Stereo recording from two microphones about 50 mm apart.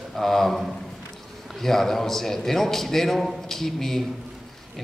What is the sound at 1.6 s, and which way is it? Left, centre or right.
A man's voice, centre.